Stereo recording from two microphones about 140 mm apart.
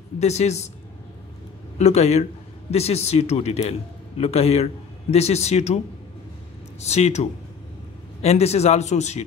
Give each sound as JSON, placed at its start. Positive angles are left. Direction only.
{"t": 0.2, "sound": "speech", "side_deg": 50}
{"t": 1.8, "sound": "speech", "side_deg": 50}
{"t": 6.8, "sound": "speech", "side_deg": 50}